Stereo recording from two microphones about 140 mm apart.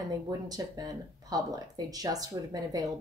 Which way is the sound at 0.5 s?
25° right (ahead or behind).